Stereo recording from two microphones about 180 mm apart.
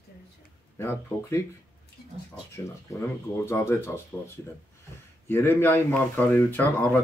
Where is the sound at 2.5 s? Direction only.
15° left (ahead or behind).